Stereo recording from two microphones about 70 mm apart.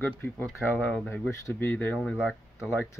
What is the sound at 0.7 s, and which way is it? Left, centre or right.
Speech, centre.